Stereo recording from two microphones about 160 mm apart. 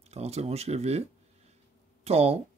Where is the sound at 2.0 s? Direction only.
40° right (ahead or behind).